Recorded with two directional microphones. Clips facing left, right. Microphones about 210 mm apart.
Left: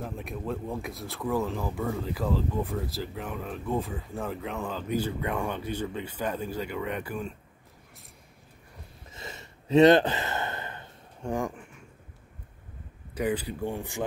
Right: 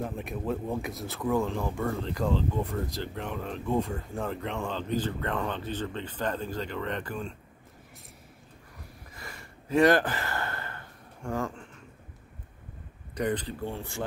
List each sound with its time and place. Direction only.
0.0 s speech: centre (ahead or behind)
8.7 s a sound: 25° left (ahead or behind)
13.1 s speech: 5° left (ahead or behind)